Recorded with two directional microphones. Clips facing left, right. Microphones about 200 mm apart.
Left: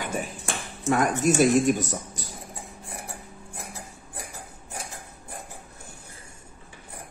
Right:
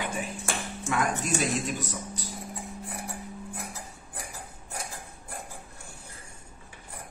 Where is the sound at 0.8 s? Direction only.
45° left (ahead or behind).